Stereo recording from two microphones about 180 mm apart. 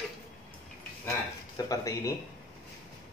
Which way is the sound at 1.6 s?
20° left (ahead or behind).